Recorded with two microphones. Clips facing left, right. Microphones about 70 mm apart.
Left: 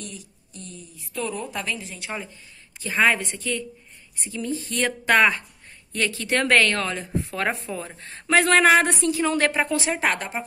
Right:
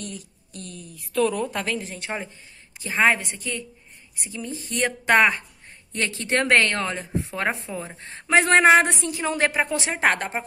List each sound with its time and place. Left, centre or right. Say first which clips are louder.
0.0 s a woman's voice: right 3 dB; right
1.5 s a woman's voice: right 3 dB; right